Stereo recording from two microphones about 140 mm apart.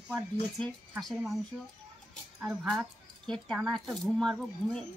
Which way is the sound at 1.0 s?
Centre (ahead or behind).